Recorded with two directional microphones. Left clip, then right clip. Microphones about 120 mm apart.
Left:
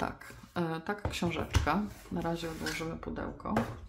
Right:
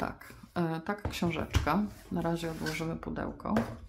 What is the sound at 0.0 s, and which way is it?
Speech, 20° right (ahead or behind).